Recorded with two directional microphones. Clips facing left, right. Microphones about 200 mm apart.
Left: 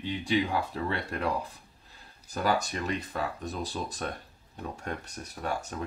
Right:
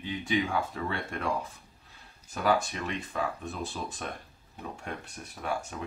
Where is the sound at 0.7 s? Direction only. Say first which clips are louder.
Left 2 dB; 35° left (ahead or behind).